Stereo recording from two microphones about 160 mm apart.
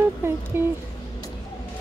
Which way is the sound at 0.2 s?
15° right (ahead or behind).